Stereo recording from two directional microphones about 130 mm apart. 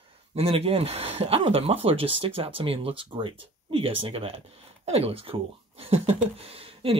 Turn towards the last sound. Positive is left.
turn(degrees=-45)  # may be behind; listen again after turning